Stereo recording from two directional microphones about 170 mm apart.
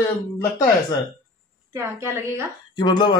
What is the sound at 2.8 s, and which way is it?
Speech, 25° left (ahead or behind).